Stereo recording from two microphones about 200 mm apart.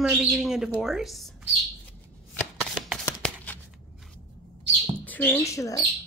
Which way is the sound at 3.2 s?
10° left (ahead or behind).